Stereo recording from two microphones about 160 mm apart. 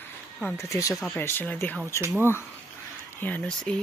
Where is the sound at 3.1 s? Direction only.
10° left (ahead or behind).